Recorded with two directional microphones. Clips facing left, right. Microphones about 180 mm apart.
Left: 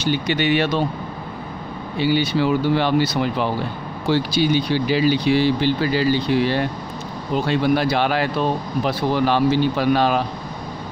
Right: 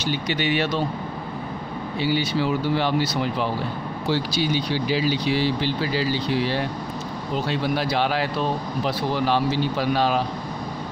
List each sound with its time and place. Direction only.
0.1 s speech: 60° left (ahead or behind)
2.0 s speech: 65° left (ahead or behind)